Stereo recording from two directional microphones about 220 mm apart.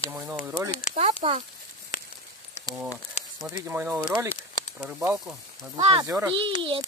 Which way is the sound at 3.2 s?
30° left (ahead or behind).